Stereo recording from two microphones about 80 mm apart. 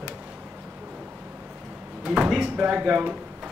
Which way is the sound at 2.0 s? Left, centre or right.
Centre.